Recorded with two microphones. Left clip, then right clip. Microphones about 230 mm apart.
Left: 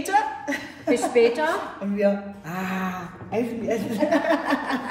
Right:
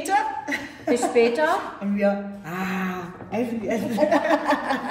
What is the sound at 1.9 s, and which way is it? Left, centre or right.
A man's voice, centre.